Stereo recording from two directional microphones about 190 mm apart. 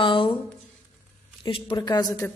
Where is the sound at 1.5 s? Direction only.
25° left (ahead or behind).